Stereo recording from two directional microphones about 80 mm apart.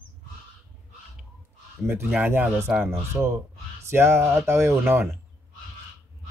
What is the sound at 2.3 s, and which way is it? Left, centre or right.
Speech, right.